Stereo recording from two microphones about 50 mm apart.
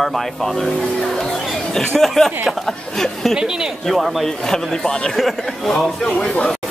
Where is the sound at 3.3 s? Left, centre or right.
Centre.